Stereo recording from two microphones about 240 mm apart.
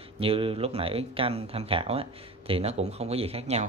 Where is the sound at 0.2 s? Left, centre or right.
Right.